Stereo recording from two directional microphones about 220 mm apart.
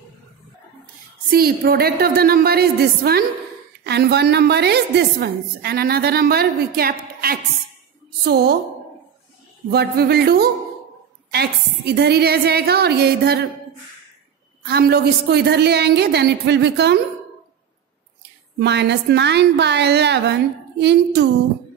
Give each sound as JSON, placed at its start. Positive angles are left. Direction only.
{"t": 1.3, "sound": "a woman's voice", "side_deg": -45}
{"t": 9.7, "sound": "a woman's voice", "side_deg": -45}
{"t": 14.7, "sound": "a woman's voice", "side_deg": -45}
{"t": 18.6, "sound": "a woman's voice", "side_deg": -50}